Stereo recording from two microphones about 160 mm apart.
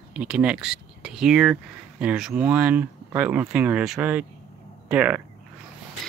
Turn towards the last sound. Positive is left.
turn(degrees=-10)  # may be behind; listen again after turning